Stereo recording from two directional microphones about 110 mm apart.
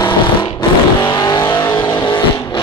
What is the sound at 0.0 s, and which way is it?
Vehicle, 40° left (ahead or behind).